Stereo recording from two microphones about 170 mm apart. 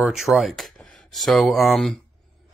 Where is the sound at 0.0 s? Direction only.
Centre (ahead or behind).